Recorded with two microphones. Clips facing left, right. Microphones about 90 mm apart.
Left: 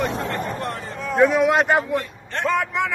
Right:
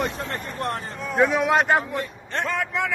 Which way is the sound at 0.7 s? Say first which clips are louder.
Right 1 dB; 45° right (ahead or behind).